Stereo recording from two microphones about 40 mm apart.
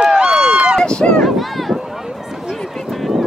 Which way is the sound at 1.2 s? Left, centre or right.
Centre.